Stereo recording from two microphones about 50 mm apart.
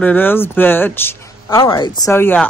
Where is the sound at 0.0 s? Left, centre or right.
Left.